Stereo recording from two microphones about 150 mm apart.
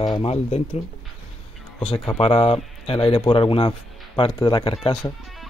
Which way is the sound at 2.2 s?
40° left (ahead or behind).